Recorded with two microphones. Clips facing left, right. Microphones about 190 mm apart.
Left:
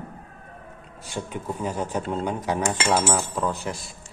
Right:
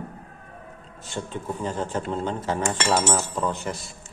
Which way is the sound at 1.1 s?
10° left (ahead or behind).